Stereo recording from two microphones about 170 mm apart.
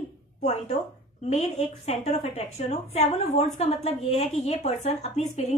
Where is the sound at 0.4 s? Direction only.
40° left (ahead or behind).